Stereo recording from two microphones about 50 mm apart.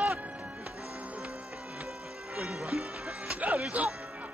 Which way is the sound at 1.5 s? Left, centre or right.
Centre.